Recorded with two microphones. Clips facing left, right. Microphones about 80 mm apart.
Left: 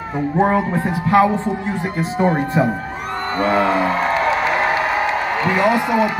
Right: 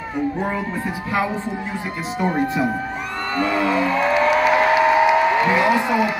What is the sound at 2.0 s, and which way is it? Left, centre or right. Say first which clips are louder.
A man's voice: left 3 dB; left.